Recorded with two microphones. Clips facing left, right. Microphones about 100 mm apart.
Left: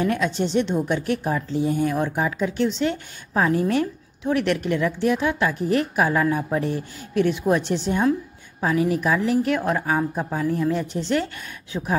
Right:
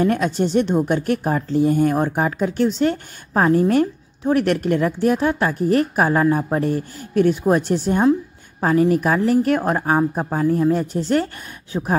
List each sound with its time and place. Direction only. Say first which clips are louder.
0.0 s a woman's voice: right 4 dB; 40° right (ahead or behind)